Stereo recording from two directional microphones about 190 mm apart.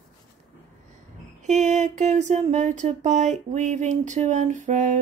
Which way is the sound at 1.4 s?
40° right (ahead or behind).